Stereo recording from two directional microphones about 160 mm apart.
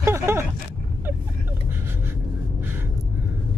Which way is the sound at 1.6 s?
15° right (ahead or behind).